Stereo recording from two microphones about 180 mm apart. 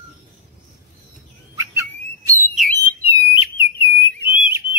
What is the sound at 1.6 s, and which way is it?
Bird, 15° right (ahead or behind).